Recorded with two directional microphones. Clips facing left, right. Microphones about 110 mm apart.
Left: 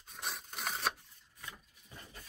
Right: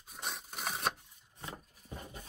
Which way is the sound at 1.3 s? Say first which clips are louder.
Right 5 dB; 35° right (ahead or behind).